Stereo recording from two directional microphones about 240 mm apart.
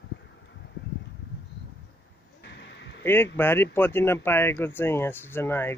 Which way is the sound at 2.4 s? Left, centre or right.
Left.